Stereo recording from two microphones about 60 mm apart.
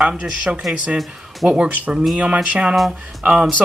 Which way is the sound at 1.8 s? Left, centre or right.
Centre.